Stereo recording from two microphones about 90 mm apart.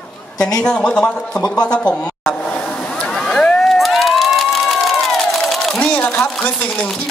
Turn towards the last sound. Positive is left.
turn(degrees=10)  # may be behind; listen again after turning